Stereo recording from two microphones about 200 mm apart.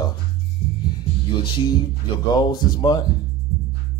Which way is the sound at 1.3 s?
25° left (ahead or behind).